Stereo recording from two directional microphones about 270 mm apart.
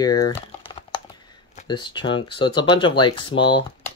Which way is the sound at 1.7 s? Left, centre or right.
Centre.